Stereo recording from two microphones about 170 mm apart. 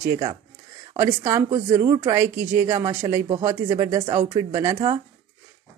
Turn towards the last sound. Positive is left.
turn(degrees=-25)  # may be behind; listen again after turning